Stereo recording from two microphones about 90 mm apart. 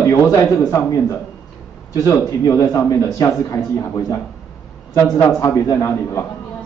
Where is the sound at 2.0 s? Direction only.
35° left (ahead or behind).